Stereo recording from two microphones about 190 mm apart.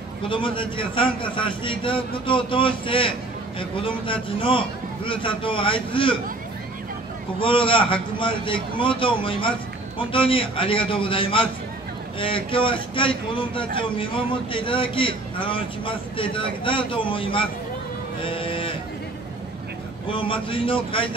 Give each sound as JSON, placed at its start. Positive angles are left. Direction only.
{"t": 0.3, "sound": "a man's voice", "side_deg": 25}
{"t": 7.3, "sound": "a man's voice", "side_deg": 25}
{"t": 18.2, "sound": "sheep", "side_deg": 25}
{"t": 20.1, "sound": "a man's voice", "side_deg": 25}